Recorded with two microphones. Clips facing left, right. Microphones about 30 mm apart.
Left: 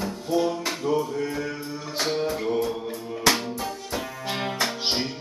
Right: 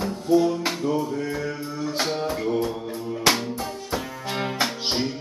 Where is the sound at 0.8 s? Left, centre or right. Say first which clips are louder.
Left 2 dB; centre.